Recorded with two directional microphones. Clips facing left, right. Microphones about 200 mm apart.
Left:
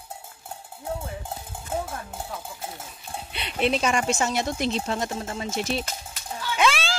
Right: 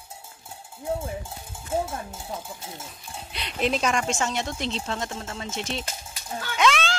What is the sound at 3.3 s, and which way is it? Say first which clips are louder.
Speech: left 1 dB; 5° left (ahead or behind).